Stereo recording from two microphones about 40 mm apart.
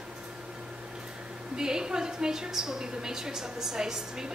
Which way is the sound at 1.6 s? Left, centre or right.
Centre.